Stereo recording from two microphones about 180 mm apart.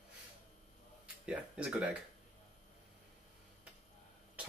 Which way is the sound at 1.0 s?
5° right (ahead or behind).